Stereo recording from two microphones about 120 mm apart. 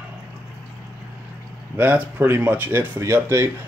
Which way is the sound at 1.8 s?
15° right (ahead or behind).